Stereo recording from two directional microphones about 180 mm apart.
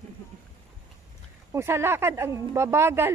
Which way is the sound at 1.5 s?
15° right (ahead or behind).